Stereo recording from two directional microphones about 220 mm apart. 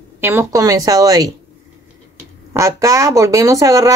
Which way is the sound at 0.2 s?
10° right (ahead or behind).